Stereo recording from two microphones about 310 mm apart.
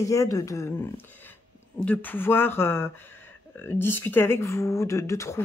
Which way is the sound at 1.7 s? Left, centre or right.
Centre.